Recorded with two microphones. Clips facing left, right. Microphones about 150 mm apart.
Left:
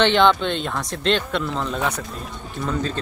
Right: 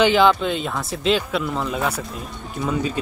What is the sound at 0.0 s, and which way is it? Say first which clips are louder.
Speech: right 1 dB; 5° right (ahead or behind).